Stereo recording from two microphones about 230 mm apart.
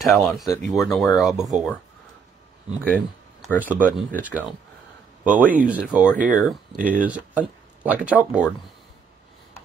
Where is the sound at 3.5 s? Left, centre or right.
Centre.